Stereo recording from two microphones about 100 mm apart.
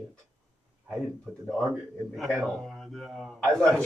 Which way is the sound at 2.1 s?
Centre (ahead or behind).